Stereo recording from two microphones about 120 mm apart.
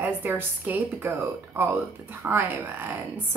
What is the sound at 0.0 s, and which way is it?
Speech, 15° right (ahead or behind).